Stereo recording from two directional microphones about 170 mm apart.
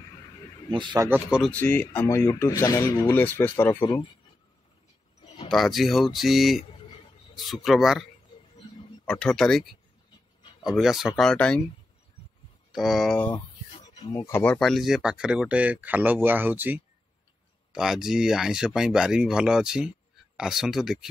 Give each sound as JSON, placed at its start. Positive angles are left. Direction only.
{"t": 0.7, "sound": "a man's voice", "side_deg": -30}
{"t": 1.0, "sound": "speech", "side_deg": -10}
{"t": 1.4, "sound": "speech", "side_deg": 10}
{"t": 5.2, "sound": "a sound", "side_deg": 35}
{"t": 5.5, "sound": "speech", "side_deg": 0}
{"t": 9.0, "sound": "speech", "side_deg": 5}
{"t": 12.7, "sound": "speech", "side_deg": 0}
{"t": 13.9, "sound": "speech", "side_deg": 20}